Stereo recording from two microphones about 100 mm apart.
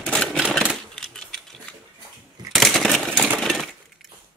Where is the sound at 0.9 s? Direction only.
5° left (ahead or behind).